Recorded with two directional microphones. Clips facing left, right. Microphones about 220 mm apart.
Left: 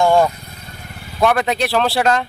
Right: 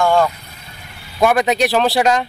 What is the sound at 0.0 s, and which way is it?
Speech, 20° left (ahead or behind).